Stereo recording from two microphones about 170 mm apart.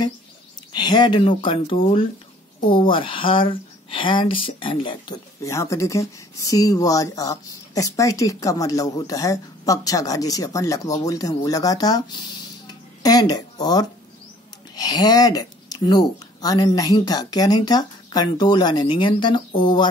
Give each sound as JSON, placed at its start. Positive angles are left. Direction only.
{"t": 0.7, "sound": "speech", "side_deg": 25}